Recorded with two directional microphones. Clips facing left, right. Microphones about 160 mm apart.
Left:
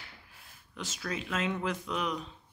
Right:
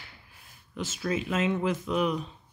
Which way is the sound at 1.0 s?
5° right (ahead or behind).